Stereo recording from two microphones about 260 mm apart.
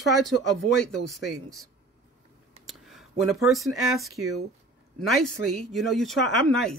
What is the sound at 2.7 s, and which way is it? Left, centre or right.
Speech, centre.